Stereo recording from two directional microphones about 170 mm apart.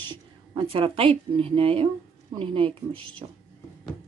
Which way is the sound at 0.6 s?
30° right (ahead or behind).